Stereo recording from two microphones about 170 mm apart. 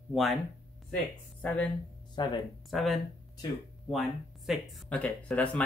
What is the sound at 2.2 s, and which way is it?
Speech, 25° left (ahead or behind).